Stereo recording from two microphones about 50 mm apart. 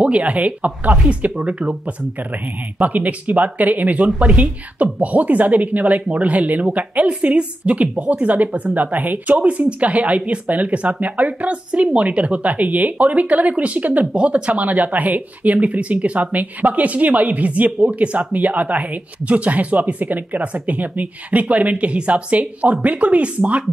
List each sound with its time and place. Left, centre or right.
0.0 s a woman's voice: right
2.8 s a woman's voice: right